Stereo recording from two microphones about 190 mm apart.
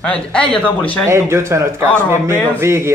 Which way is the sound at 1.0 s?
15° right (ahead or behind).